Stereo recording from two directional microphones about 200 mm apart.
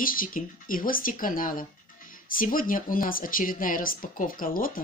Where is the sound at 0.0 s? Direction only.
45° left (ahead or behind).